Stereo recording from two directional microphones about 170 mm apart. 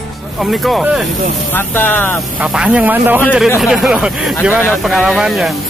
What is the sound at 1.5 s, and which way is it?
Speech, 10° left (ahead or behind).